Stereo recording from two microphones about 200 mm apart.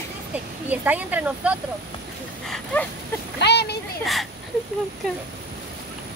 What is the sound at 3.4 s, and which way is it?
Speech, 55° left (ahead or behind).